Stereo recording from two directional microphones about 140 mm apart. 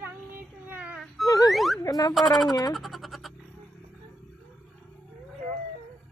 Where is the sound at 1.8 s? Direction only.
25° left (ahead or behind).